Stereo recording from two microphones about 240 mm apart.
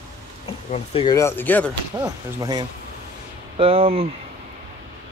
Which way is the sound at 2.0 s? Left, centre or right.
Centre.